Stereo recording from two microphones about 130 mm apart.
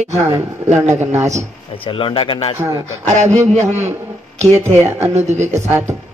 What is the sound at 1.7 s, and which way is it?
Speech, 40° left (ahead or behind).